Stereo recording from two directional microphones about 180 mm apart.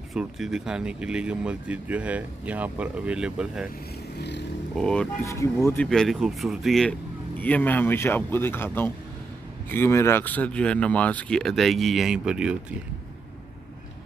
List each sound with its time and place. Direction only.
0.1 s speech: centre (ahead or behind)
4.7 s speech: 5° left (ahead or behind)
5.2 s speech: 15° left (ahead or behind)
5.9 s speech: centre (ahead or behind)